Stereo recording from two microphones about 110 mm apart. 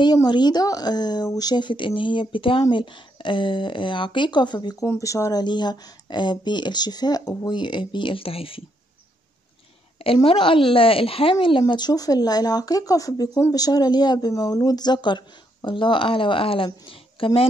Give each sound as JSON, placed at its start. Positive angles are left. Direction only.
{"t": 0.0, "sound": "speech", "side_deg": 40}
{"t": 4.8, "sound": "speech", "side_deg": 30}
{"t": 5.4, "sound": "speech", "side_deg": 40}
{"t": 10.2, "sound": "speech", "side_deg": 55}
{"t": 11.6, "sound": "speech", "side_deg": 40}